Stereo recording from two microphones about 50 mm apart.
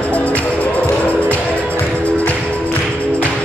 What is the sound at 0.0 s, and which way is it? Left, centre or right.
Music, left.